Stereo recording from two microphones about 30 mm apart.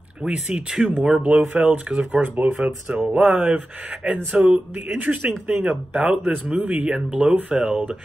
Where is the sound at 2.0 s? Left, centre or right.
Right.